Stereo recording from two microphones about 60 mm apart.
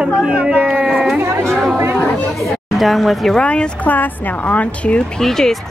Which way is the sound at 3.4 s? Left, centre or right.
Centre.